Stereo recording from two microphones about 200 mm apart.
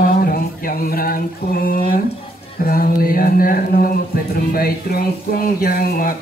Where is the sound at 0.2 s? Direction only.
45° left (ahead or behind).